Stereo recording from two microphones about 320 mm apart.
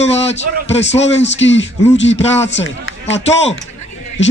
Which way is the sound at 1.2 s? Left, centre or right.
Left.